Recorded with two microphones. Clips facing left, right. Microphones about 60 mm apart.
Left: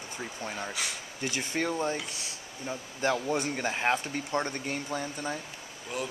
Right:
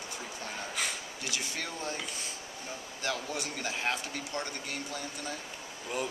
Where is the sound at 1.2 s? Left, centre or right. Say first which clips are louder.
Left 8 dB; left.